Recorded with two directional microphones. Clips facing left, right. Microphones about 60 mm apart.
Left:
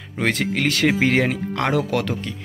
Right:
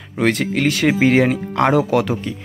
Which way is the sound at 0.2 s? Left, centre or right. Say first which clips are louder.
Right 4 dB; centre.